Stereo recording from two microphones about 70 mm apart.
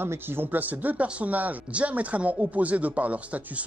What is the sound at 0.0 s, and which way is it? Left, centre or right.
Speech, right.